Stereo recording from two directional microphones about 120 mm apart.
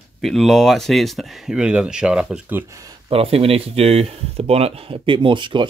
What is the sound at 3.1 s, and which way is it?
Speech, 55° right (ahead or behind).